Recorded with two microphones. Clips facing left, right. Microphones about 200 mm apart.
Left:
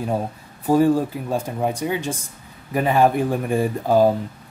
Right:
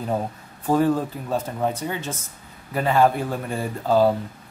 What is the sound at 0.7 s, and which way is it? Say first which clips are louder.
Speech: left 3 dB; 10° left (ahead or behind).